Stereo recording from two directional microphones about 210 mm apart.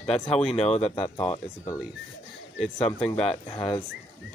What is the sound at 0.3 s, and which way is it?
Speech, 5° left (ahead or behind).